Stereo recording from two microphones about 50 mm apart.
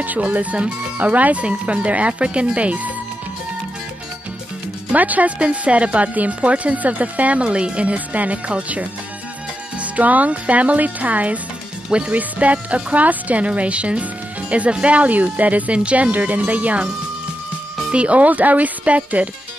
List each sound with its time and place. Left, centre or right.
0.0 s speech: right
4.9 s speech: right
9.9 s speech: right
17.9 s speech: right